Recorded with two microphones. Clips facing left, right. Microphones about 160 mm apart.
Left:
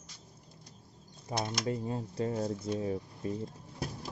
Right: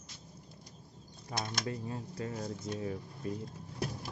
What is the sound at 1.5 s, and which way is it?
Speech, 25° left (ahead or behind).